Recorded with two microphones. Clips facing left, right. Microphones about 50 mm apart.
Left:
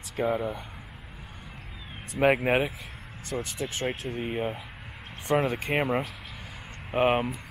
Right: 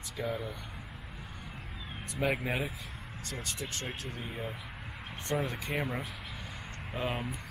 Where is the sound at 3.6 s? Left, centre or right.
Left.